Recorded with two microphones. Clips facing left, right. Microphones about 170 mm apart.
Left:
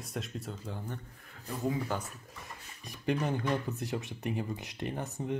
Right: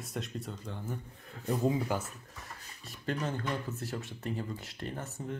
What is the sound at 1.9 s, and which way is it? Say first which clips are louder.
Speech: right 2 dB; 10° right (ahead or behind).